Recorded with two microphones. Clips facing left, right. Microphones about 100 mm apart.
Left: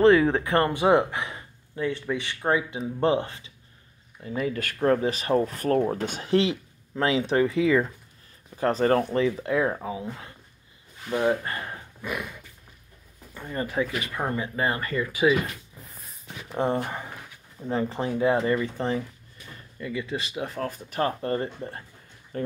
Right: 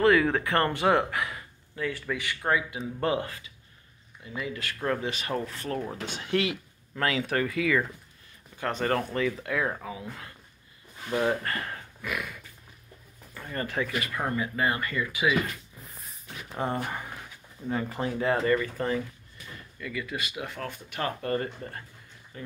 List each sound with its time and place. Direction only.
0.0 s speech: 25° left (ahead or behind)
4.2 s speech: 40° left (ahead or behind)
6.3 s speech: 30° left (ahead or behind)
16.5 s speech: 25° left (ahead or behind)
22.3 s speech: 50° left (ahead or behind)